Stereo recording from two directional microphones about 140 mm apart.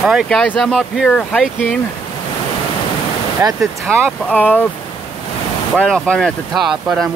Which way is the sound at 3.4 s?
15° right (ahead or behind).